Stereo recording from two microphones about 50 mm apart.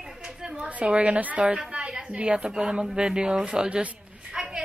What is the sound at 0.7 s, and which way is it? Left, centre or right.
Speech, right.